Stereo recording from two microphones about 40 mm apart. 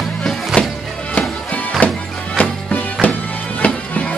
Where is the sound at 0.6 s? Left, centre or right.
Left.